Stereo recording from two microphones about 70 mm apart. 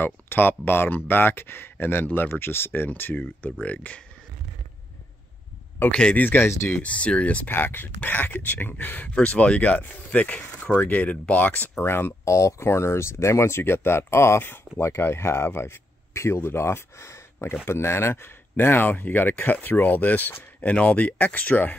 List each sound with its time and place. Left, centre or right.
0.0 s speech: left
5.8 s speech: centre
7.5 s speech: left
11.8 s speech: left
12.3 s speech: left